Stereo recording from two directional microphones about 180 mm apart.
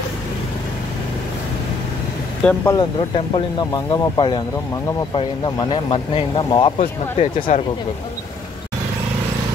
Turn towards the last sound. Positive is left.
turn(degrees=40)  # may be behind; listen again after turning